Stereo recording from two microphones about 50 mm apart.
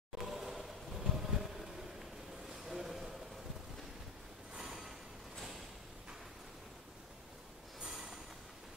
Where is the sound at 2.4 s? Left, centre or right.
Centre.